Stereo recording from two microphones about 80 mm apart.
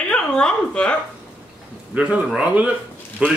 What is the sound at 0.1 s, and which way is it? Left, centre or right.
Speech, centre.